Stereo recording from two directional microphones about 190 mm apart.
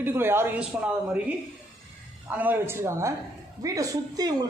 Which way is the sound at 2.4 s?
10° right (ahead or behind).